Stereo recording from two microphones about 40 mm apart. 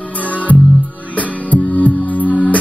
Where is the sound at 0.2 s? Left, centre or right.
Left.